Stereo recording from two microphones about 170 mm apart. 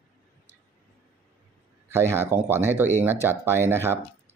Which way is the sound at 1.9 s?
15° right (ahead or behind).